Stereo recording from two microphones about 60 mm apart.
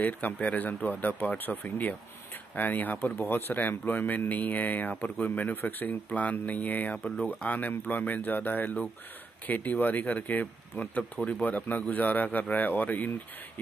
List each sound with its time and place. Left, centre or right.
0.0 s speech: left